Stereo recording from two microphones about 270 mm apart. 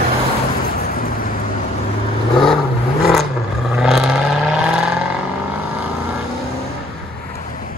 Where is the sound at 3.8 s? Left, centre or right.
Centre.